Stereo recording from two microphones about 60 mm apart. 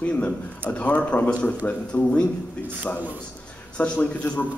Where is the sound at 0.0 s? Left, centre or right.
Left.